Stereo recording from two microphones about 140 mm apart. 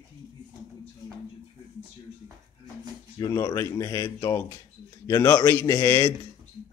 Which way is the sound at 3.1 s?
25° left (ahead or behind).